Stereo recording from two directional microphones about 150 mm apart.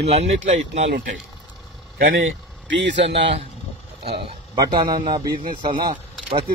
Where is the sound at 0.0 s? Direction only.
45° right (ahead or behind).